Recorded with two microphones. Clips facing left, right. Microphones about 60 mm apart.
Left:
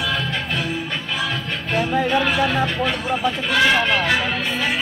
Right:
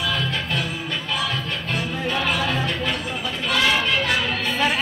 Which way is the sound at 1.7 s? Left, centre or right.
Left.